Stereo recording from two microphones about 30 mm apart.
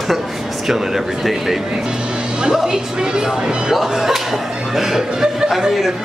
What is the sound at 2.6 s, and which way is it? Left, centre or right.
A woman's voice, right.